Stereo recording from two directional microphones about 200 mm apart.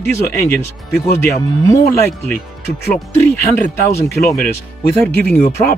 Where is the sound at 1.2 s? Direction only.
15° left (ahead or behind).